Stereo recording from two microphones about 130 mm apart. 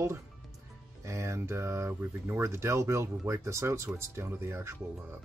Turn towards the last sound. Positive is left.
turn(degrees=-20)  # may be behind; listen again after turning